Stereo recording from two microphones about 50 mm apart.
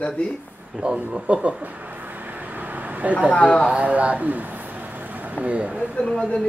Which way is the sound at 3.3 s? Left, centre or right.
Left.